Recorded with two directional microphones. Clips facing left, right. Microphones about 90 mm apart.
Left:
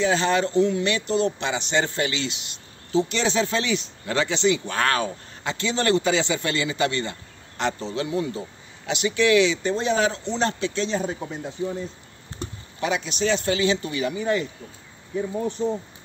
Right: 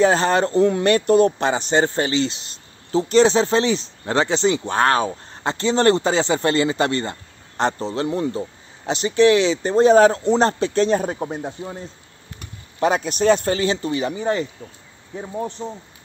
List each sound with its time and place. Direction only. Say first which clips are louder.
0.0 s speech: right 5 dB; 45° right (ahead or behind)
12.4 s a sound: left 9 dB; 30° left (ahead or behind)
12.8 s speech: right 7 dB; 45° right (ahead or behind)